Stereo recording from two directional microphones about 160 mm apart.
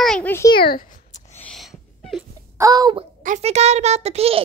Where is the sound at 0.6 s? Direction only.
65° left (ahead or behind); by 1.5 s 45° left (ahead or behind).